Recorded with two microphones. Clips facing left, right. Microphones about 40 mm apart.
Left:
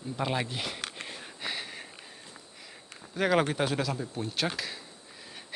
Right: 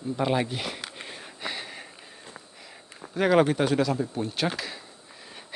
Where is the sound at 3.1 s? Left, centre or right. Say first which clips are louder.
Right 5 dB; centre.